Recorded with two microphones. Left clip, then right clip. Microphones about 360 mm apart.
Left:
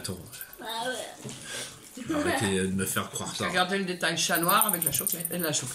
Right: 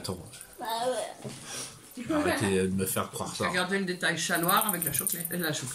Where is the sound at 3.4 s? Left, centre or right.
Centre.